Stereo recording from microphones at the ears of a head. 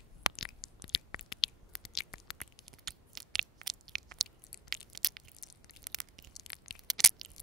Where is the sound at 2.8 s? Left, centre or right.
Right.